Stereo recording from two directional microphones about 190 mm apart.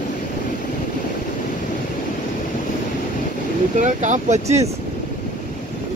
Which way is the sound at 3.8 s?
40° right (ahead or behind).